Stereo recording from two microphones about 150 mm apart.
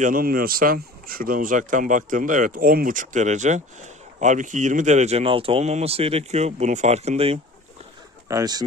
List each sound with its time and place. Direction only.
0.0 s speech: 70° right (ahead or behind); by 7.3 s 45° right (ahead or behind)
8.3 s speech: 25° right (ahead or behind)